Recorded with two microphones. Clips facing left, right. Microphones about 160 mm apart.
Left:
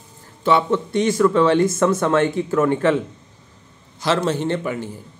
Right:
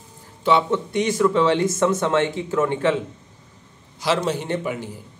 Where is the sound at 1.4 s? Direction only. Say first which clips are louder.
Left 3 dB; 50° left (ahead or behind).